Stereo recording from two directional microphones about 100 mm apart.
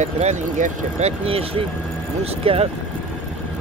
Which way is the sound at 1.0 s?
75° right (ahead or behind).